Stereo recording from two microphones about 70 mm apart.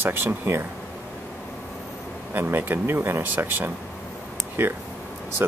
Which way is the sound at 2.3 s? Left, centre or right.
Right.